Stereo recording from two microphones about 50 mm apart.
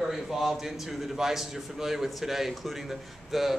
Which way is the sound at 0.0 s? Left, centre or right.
Centre.